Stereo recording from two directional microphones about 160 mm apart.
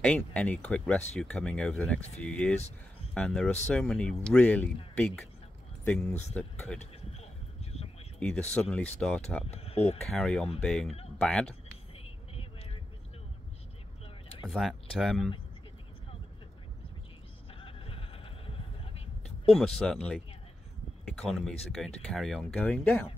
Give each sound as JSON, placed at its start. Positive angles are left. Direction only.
{"t": 0.0, "sound": "speech", "side_deg": 5}
{"t": 7.7, "sound": "a sound", "side_deg": 40}
{"t": 8.2, "sound": "speech", "side_deg": 5}
{"t": 9.5, "sound": "speech", "side_deg": 40}
{"t": 10.1, "sound": "speech", "side_deg": 5}
{"t": 12.0, "sound": "vehicle", "side_deg": 40}
{"t": 14.4, "sound": "speech", "side_deg": 0}
{"t": 17.6, "sound": "a sound", "side_deg": 35}
{"t": 19.2, "sound": "speech", "side_deg": 5}